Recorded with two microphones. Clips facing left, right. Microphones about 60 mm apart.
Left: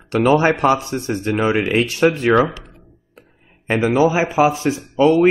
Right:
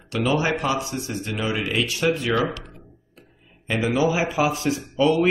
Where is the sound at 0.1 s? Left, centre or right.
Left.